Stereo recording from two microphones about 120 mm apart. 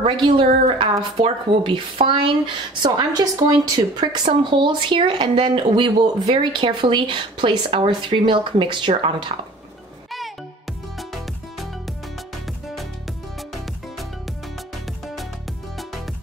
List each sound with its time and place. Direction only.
0.0 s speech: 50° right (ahead or behind)